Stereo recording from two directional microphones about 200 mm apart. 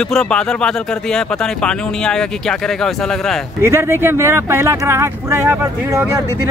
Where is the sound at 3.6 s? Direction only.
10° right (ahead or behind).